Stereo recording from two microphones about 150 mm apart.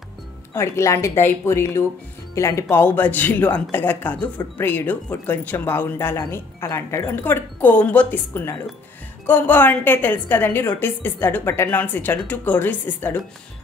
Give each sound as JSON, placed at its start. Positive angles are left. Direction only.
{"t": 0.6, "sound": "speech", "side_deg": 20}